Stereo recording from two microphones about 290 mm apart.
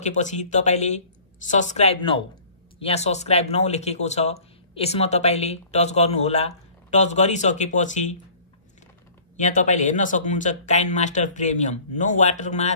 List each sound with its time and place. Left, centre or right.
0.0 s speech: left
9.4 s speech: left